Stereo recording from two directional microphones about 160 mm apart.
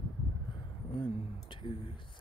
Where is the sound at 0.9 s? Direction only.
30° left (ahead or behind).